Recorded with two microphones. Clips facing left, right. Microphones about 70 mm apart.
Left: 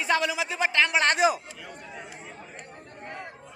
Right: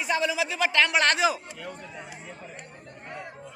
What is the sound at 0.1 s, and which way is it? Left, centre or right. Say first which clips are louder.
Speech: left 1 dB; left.